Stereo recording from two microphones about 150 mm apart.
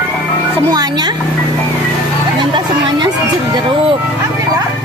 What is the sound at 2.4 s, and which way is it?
Speech, 30° right (ahead or behind).